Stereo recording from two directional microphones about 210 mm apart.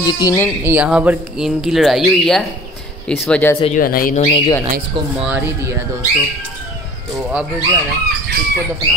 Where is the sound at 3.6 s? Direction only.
40° left (ahead or behind).